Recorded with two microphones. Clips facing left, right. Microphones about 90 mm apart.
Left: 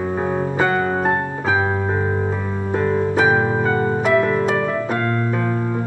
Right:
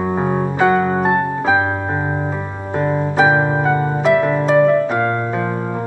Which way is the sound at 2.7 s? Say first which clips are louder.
Right 2 dB; 20° right (ahead or behind).